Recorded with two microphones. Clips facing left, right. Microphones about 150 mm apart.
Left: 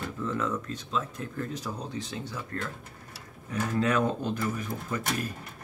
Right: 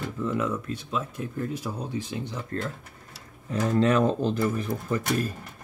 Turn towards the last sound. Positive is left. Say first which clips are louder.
# right 5 dB
turn(degrees=-30)  # may be behind; listen again after turning